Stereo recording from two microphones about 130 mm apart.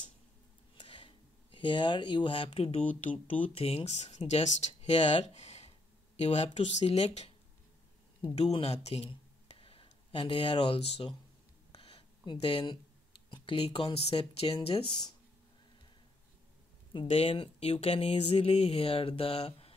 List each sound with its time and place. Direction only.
0.7 s a sound: 40° left (ahead or behind)
3.3 s speech: 45° left (ahead or behind)
5.2 s a sound: 60° left (ahead or behind)
6.2 s speech: 60° left (ahead or behind)
8.4 s speech: 50° left (ahead or behind)
16.9 s speech: 45° left (ahead or behind)